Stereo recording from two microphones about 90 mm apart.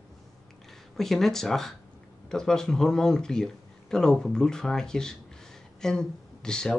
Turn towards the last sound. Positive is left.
turn(degrees=10)  # may be behind; listen again after turning